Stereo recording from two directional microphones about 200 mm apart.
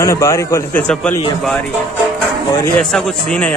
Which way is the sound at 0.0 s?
15° left (ahead or behind).